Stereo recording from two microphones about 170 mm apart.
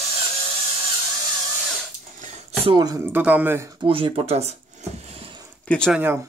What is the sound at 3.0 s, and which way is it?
Speech, 10° right (ahead or behind).